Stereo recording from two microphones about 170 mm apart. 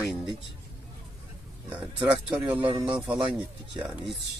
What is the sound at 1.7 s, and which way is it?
Speech, 10° right (ahead or behind).